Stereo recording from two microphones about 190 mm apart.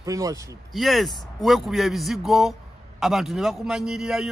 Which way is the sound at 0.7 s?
Centre (ahead or behind).